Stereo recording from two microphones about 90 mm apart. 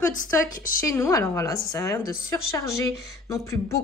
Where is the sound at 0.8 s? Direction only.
35° left (ahead or behind).